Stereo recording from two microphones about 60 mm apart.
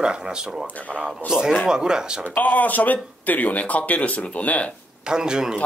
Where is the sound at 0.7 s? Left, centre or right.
Left.